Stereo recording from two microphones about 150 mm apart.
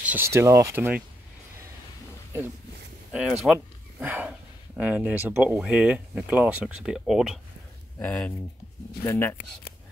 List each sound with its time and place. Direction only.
0.0 s speech: 15° right (ahead or behind)
3.1 s speech: 5° right (ahead or behind)
8.0 s speech: 10° left (ahead or behind)